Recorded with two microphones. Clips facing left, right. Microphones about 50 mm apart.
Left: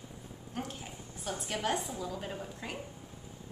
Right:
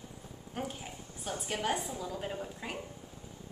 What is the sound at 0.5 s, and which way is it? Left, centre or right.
A woman's voice, centre.